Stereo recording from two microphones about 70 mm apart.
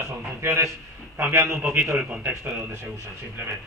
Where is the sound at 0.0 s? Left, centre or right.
Right.